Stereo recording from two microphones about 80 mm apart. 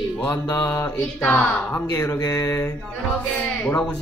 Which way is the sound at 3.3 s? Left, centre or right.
Centre.